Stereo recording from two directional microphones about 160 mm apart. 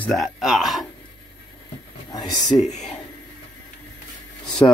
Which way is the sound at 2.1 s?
25° left (ahead or behind).